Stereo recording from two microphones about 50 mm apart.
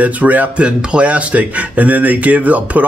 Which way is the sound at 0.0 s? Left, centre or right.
Right.